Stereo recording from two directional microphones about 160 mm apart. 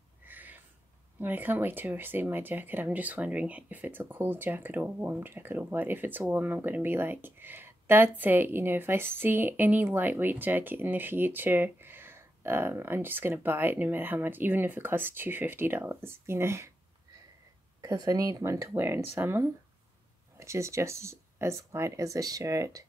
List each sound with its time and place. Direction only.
0.2 s a sound: 10° right (ahead or behind)
1.2 s speech: 10° right (ahead or behind)
17.8 s speech: 20° right (ahead or behind)